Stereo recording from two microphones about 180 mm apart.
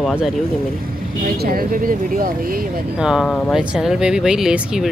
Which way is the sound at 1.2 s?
55° right (ahead or behind).